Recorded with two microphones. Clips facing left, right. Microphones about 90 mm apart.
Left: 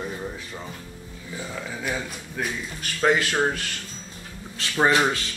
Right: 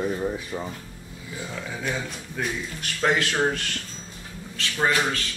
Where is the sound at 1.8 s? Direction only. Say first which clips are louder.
Even; 5° left (ahead or behind).